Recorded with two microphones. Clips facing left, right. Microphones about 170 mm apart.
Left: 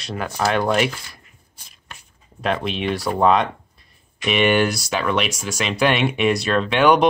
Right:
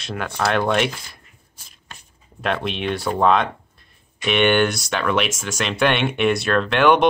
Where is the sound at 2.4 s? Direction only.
Centre (ahead or behind).